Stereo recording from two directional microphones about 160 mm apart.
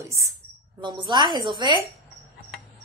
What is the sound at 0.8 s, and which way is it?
A woman's voice, 30° right (ahead or behind).